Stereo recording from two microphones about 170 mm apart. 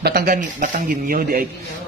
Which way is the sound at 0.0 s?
65° right (ahead or behind).